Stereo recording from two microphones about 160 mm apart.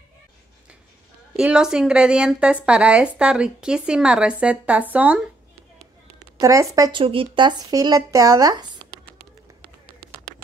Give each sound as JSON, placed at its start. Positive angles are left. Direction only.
{"t": 1.3, "sound": "a woman's voice", "side_deg": -5}
{"t": 6.3, "sound": "speech", "side_deg": -20}